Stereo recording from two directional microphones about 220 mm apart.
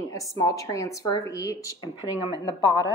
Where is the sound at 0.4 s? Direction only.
15° left (ahead or behind).